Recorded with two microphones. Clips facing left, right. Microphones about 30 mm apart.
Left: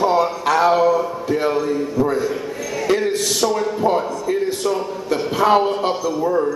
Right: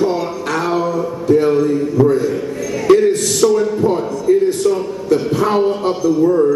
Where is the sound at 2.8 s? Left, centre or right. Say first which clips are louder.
Right 7 dB; centre.